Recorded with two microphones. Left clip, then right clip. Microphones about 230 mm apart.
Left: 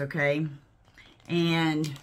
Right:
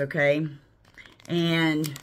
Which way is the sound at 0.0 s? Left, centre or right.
Centre.